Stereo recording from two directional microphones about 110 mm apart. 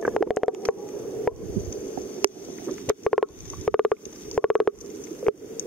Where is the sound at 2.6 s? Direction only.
15° left (ahead or behind).